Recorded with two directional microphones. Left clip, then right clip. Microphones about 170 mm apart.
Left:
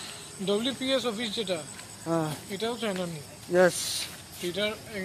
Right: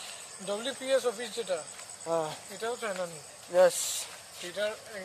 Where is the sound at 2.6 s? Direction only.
65° right (ahead or behind).